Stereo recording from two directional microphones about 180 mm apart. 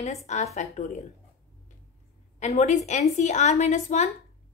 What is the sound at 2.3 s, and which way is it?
A woman's voice, 40° left (ahead or behind).